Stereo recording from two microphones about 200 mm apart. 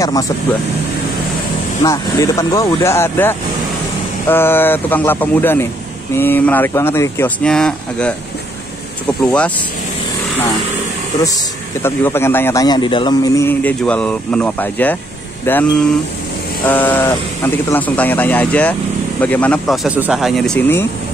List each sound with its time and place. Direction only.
0.0 s a man's voice: 20° left (ahead or behind)
1.8 s a man's voice: 15° left (ahead or behind)
11.8 s a man's voice: 10° left (ahead or behind)